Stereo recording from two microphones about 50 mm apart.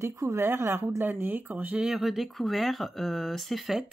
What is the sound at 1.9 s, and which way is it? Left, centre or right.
Speech, centre.